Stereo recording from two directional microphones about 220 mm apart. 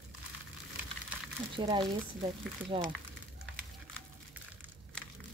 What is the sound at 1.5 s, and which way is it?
A woman's voice, 20° right (ahead or behind).